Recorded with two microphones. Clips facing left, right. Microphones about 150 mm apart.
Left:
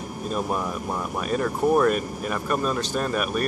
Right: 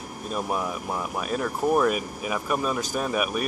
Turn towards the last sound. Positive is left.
turn(degrees=-5)  # may be behind; listen again after turning